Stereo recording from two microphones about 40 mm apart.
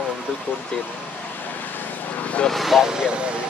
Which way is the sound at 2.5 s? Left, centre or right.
Centre.